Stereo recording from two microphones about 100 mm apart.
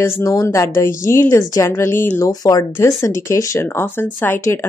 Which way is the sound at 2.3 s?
40° left (ahead or behind).